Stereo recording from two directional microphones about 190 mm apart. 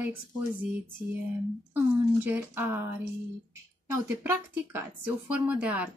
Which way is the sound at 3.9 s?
15° right (ahead or behind).